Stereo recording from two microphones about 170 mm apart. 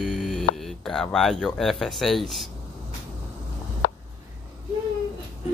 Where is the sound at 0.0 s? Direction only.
Centre (ahead or behind).